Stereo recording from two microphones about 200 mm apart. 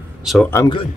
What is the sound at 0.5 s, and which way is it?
Speech, 15° left (ahead or behind).